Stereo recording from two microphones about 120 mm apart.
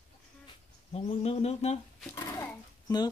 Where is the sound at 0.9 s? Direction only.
60° left (ahead or behind).